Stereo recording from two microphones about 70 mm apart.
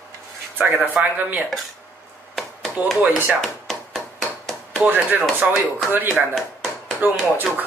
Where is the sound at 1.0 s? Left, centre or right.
Centre.